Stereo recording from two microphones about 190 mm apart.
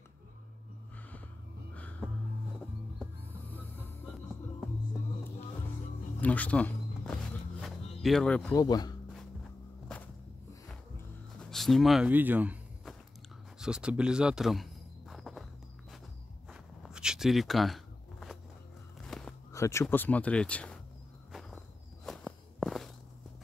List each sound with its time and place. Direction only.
1.8 s music: 10° left (ahead or behind)
6.2 s a sound: 10° left (ahead or behind)
8.0 s speech: centre (ahead or behind)
8.5 s speech: 20° left (ahead or behind)
11.3 s a sound: centre (ahead or behind)
13.6 s insect: 5° right (ahead or behind)
16.4 s a sound: 5° right (ahead or behind)
19.5 s speech: 15° left (ahead or behind)
21.3 s insect: centre (ahead or behind)
22.0 s walk: centre (ahead or behind)